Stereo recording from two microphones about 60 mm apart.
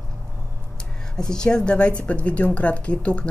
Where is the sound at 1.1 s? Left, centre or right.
Centre.